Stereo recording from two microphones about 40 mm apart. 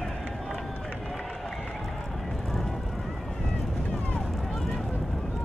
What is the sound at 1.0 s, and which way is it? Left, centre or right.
Run, centre.